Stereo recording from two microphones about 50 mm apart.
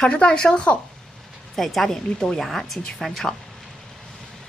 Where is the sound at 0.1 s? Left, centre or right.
Left.